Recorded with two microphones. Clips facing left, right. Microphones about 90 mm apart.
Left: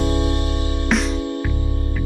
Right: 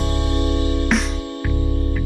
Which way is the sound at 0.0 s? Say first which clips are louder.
Left 1 dB; 20° left (ahead or behind).